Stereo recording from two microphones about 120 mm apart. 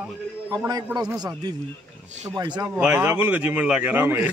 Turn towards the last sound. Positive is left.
turn(degrees=-15)  # may be behind; listen again after turning